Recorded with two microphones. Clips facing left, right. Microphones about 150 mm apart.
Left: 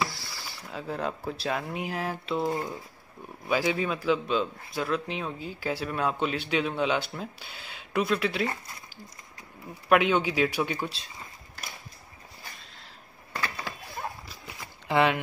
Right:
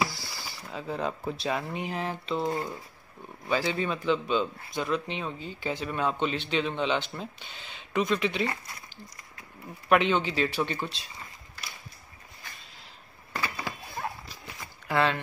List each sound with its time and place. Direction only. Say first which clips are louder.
0.0 s speech: right 1 dB; centre (ahead or behind)
9.8 s speech: left 1 dB; 5° left (ahead or behind)
13.3 s a sound: right 1 dB; 10° right (ahead or behind)
14.9 s speech: left 2 dB; 20° left (ahead or behind)